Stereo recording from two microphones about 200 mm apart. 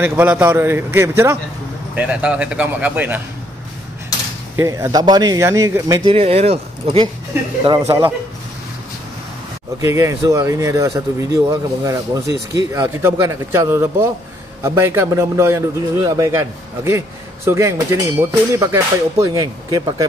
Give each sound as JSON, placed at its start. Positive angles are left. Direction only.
{"t": 0.0, "sound": "speech", "side_deg": -10}
{"t": 4.6, "sound": "speech", "side_deg": -15}
{"t": 9.8, "sound": "speech", "side_deg": -15}